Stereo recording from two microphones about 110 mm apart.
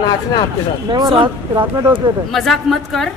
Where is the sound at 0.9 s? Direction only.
45° right (ahead or behind).